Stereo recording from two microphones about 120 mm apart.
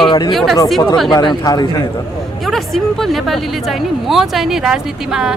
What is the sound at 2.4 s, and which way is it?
Speech, centre (ahead or behind).